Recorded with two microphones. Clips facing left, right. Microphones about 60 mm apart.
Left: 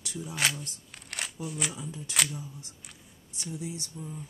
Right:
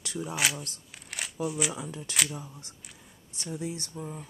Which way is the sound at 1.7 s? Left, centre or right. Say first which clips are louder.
Right 3 dB; right.